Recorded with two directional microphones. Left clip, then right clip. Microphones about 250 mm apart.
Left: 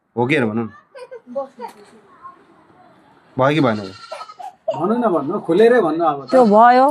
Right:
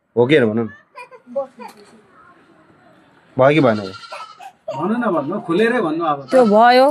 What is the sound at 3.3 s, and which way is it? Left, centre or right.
Speech, centre.